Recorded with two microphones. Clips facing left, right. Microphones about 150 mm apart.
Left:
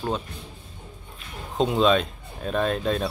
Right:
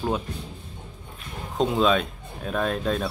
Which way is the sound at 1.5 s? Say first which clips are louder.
Left 1 dB; centre (ahead or behind).